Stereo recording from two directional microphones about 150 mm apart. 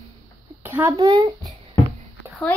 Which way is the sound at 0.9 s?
30° right (ahead or behind).